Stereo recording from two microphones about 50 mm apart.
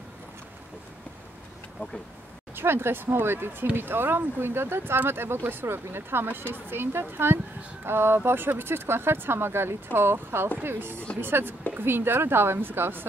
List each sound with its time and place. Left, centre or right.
2.5 s speech: right